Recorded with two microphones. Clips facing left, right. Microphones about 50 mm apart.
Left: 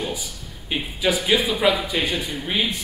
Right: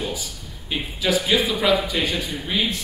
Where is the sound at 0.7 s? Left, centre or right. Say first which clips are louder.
Left 1 dB; centre.